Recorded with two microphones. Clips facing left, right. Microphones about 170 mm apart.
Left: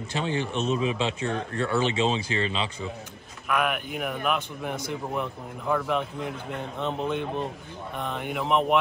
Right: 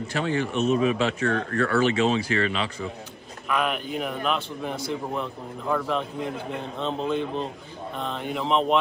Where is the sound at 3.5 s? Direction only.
10° left (ahead or behind).